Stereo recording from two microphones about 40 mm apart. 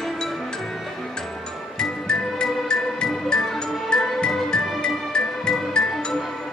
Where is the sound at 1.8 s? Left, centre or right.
Centre.